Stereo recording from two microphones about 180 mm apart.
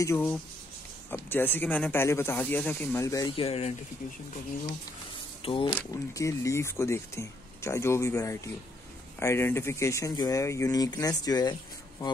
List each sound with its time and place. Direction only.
0.0 s speech: 15° left (ahead or behind)
3.3 s speech: 35° left (ahead or behind)
5.4 s speech: 30° left (ahead or behind)
5.8 s speech: 15° left (ahead or behind)